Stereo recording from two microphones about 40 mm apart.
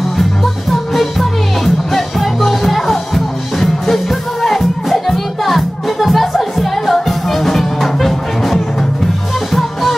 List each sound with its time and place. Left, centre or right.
0.2 s music: centre